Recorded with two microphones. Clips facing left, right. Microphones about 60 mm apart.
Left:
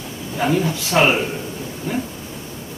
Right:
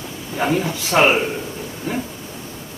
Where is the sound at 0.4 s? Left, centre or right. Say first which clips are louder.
Left 1 dB; centre.